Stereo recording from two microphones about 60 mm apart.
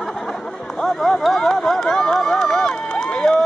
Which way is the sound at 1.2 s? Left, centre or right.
Centre.